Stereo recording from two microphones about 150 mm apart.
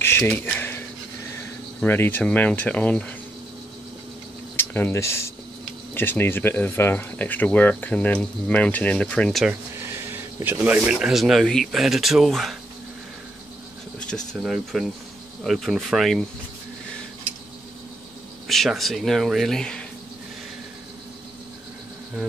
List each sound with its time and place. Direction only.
0.0 s a sound: 15° left (ahead or behind)
1.8 s speech: 15° left (ahead or behind)
4.6 s speech: 15° left (ahead or behind)
10.4 s speech: 10° right (ahead or behind)
13.9 s speech: centre (ahead or behind)
18.5 s speech: centre (ahead or behind)